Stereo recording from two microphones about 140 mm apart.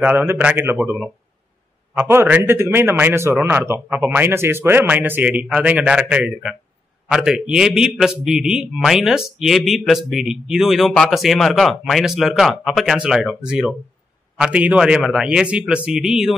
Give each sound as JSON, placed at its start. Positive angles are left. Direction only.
{"t": 0.0, "sound": "a man's voice", "side_deg": -15}